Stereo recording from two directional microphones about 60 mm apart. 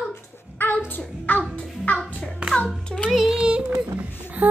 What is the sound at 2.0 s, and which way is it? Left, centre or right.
Hands, left.